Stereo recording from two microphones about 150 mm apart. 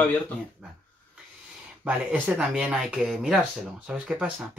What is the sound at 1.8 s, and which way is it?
Speech, 5° right (ahead or behind).